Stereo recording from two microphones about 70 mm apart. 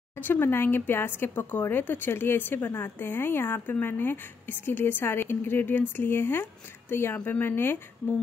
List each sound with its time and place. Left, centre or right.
0.2 s speech: left